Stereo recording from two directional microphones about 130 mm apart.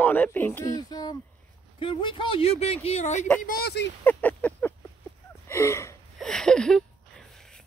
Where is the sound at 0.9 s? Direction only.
30° left (ahead or behind); by 3.3 s 65° left (ahead or behind).